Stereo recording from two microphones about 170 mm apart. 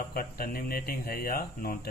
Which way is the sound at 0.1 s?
60° left (ahead or behind).